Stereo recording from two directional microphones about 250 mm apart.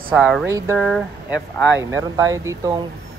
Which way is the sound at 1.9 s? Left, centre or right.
Centre.